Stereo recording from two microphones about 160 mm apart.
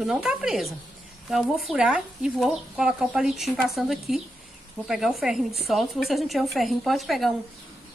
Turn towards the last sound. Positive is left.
turn(degrees=0)  # may be behind; listen again after turning